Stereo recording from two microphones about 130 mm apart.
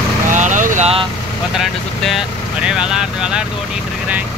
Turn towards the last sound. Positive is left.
turn(degrees=-5)  # may be behind; listen again after turning